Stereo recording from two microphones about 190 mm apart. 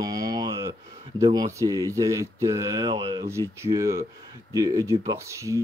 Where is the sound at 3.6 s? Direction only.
15° right (ahead or behind).